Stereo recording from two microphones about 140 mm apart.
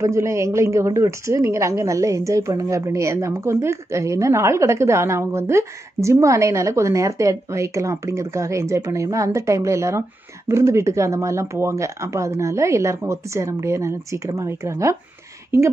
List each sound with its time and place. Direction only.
0.0 s a woman's voice: 20° right (ahead or behind)